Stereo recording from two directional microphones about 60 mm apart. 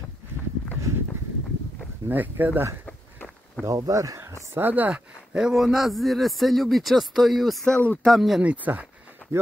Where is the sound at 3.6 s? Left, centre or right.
Right.